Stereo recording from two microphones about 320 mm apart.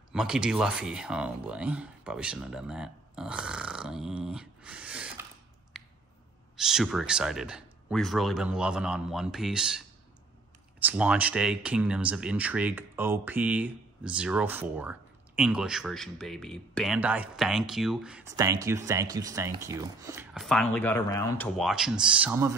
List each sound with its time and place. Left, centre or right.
0.1 s speech: centre
5.7 s a sound: centre
6.5 s speech: centre